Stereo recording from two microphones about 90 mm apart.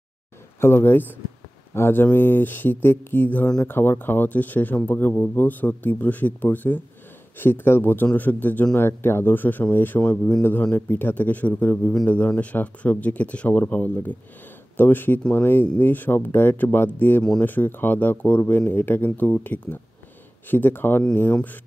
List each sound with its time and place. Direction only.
0.6 s speech: 25° left (ahead or behind)